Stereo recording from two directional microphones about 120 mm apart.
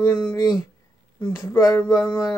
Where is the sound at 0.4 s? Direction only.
30° left (ahead or behind).